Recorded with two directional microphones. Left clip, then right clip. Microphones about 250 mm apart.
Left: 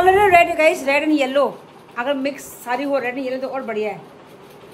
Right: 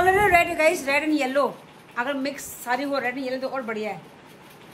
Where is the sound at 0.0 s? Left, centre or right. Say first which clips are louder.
Left 6 dB; centre.